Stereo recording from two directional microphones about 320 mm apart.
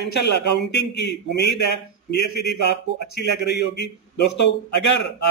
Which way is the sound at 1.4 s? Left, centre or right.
Left.